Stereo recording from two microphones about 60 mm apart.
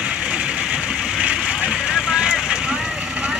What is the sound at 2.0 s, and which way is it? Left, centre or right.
Vehicle, centre.